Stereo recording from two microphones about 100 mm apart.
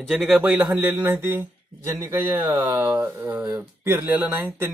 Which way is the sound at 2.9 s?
20° right (ahead or behind).